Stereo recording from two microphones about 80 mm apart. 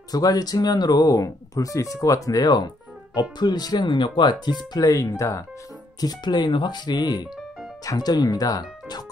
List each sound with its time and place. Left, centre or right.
0.1 s speech: left
5.9 s speech: left